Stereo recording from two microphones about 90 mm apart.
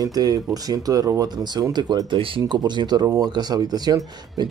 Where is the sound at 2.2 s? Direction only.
70° right (ahead or behind); by 4.5 s 50° right (ahead or behind).